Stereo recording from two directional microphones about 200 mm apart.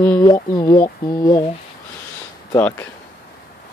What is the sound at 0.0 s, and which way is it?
Speech, 10° left (ahead or behind).